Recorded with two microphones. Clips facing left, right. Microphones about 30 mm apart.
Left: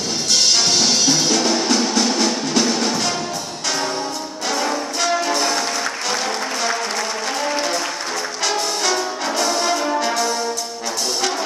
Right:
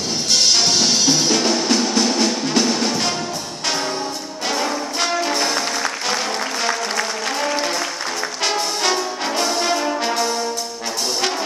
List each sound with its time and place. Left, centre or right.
0.3 s drum kit: centre
1.6 s music: centre
5.2 s music: centre
7.3 s applause: centre
8.5 s music: centre
8.9 s brass instrument: centre